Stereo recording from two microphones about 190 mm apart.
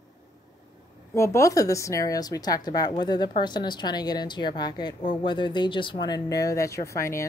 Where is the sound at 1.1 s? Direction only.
15° left (ahead or behind).